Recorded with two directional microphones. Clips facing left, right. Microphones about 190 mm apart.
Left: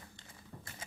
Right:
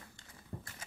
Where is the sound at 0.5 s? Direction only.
30° right (ahead or behind).